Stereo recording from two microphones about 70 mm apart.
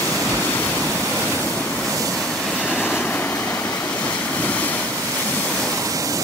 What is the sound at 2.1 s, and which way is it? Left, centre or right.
Train, centre.